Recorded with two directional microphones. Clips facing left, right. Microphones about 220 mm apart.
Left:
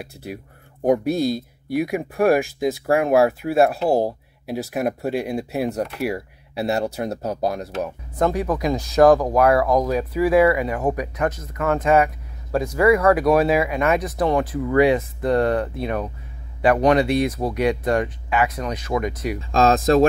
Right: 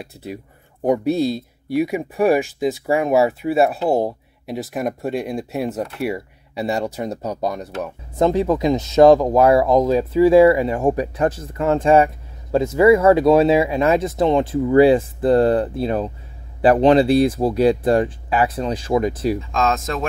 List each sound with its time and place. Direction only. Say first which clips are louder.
0.0 s speech: right 1 dB; 5° left (ahead or behind)
8.2 s speech: right 4 dB; 25° right (ahead or behind)
19.5 s speech: left 5 dB; 35° left (ahead or behind)